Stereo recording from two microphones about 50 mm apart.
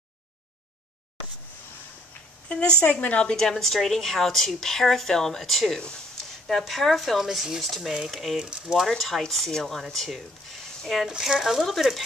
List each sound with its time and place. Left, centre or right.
2.5 s a woman's voice: left
3.3 s speech: centre
7.2 s speech: centre
8.4 s speech: centre
8.8 s speech: centre